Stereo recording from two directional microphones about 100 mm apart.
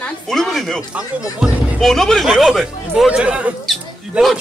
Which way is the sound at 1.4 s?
5° right (ahead or behind).